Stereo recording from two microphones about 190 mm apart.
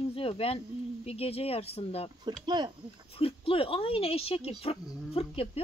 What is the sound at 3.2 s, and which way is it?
A woman's voice, 30° left (ahead or behind).